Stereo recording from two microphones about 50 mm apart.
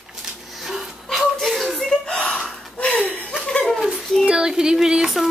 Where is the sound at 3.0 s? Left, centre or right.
Left.